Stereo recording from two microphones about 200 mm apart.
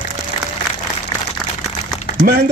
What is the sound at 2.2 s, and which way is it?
Speech, 50° right (ahead or behind).